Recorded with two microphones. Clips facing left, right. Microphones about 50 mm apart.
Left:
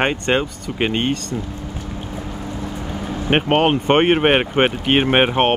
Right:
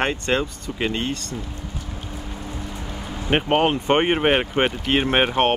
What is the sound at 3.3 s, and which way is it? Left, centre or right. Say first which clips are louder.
Speech: left 3 dB; left.